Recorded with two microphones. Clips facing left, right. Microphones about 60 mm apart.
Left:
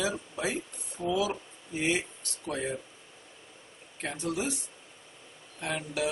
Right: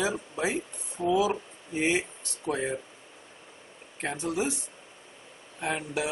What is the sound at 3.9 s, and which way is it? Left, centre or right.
Speech, centre.